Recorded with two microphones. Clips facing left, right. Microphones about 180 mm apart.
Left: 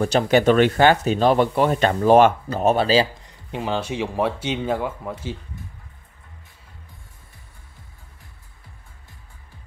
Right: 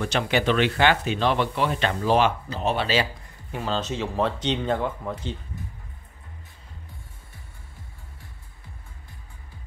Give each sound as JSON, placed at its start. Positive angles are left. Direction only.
{"t": 0.0, "sound": "speech", "side_deg": 40}
{"t": 3.3, "sound": "speech", "side_deg": 15}